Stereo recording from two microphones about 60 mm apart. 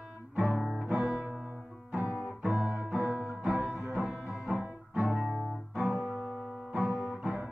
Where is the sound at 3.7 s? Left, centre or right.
Centre.